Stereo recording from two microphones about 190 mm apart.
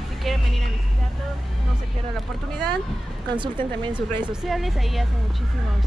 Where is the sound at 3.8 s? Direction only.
25° right (ahead or behind).